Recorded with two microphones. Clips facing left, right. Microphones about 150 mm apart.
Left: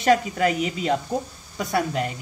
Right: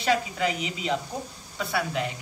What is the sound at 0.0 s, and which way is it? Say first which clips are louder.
A woman's voice: left 6 dB; 50° left (ahead or behind).